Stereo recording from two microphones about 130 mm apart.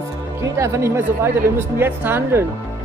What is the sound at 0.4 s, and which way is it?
Speech, 20° right (ahead or behind).